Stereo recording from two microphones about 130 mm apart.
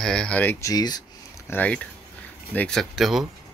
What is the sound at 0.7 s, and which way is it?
Speech, 30° left (ahead or behind).